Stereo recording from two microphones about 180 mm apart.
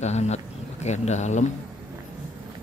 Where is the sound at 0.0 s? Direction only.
40° left (ahead or behind).